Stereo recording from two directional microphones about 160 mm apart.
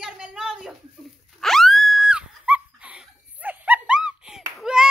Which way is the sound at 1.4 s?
Centre (ahead or behind).